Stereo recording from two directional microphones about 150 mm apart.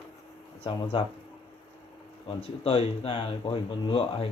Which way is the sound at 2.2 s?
40° left (ahead or behind).